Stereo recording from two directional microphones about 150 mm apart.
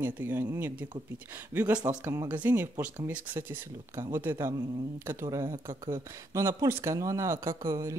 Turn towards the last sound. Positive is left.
turn(degrees=-20)  # may be behind; listen again after turning